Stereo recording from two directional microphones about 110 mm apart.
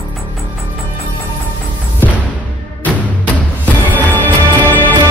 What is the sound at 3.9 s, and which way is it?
Music, 15° left (ahead or behind).